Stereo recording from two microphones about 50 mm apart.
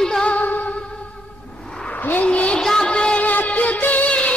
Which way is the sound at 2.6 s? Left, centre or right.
Centre.